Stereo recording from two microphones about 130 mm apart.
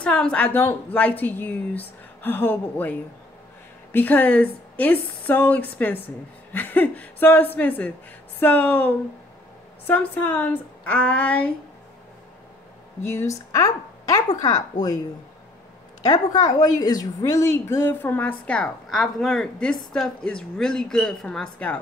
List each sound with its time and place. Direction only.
0.0 s a woman's voice: 5° left (ahead or behind)
13.1 s a woman's voice: 25° left (ahead or behind)
16.0 s a woman's voice: 30° left (ahead or behind); by 21.7 s 10° left (ahead or behind)